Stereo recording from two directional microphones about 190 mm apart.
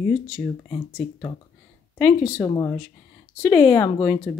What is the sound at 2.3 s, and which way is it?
Speech, 20° left (ahead or behind).